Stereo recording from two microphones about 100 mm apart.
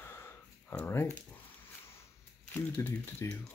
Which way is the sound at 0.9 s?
25° left (ahead or behind).